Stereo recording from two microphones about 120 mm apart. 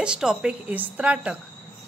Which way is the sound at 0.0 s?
5° right (ahead or behind).